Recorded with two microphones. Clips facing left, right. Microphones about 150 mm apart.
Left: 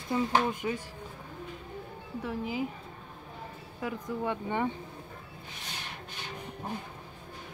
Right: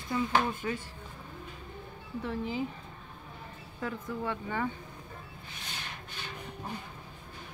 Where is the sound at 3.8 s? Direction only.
20° left (ahead or behind).